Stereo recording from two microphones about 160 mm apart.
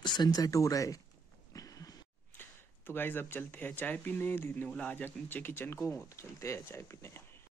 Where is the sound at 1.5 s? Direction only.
20° left (ahead or behind).